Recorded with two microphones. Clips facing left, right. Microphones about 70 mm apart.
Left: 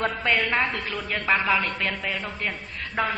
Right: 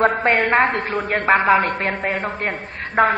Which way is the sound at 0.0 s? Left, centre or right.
Right.